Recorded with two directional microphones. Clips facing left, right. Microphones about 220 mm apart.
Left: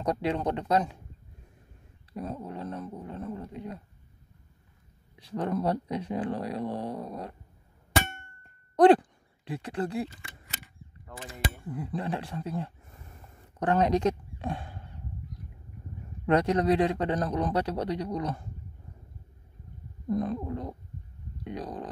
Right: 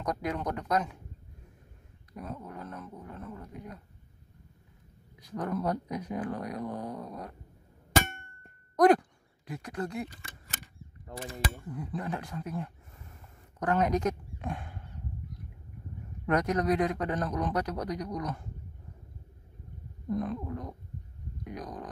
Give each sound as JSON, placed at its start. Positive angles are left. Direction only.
{"t": 0.0, "sound": "speech", "side_deg": 30}
{"t": 2.1, "sound": "speech", "side_deg": 30}
{"t": 5.2, "sound": "speech", "side_deg": 30}
{"t": 8.7, "sound": "speech", "side_deg": 30}
{"t": 11.1, "sound": "mechanisms", "side_deg": -30}
{"t": 11.7, "sound": "speech", "side_deg": 30}
{"t": 16.3, "sound": "speech", "side_deg": 30}
{"t": 20.1, "sound": "speech", "side_deg": 30}